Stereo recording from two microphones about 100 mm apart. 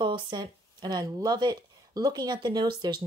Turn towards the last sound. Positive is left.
turn(degrees=-45)  # may be behind; listen again after turning